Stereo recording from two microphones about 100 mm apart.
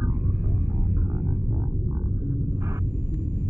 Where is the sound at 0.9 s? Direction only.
35° right (ahead or behind).